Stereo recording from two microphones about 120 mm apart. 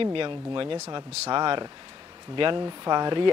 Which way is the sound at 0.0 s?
45° right (ahead or behind).